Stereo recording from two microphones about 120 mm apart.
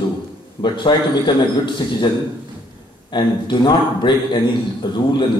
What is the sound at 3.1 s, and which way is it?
A man's voice, 40° left (ahead or behind).